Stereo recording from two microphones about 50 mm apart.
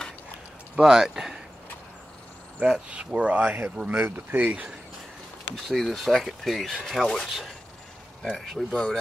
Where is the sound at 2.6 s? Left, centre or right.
Right.